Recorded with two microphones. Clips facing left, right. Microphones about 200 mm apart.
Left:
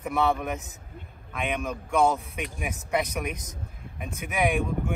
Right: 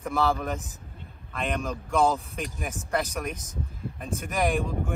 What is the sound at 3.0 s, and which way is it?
Speech, 30° right (ahead or behind).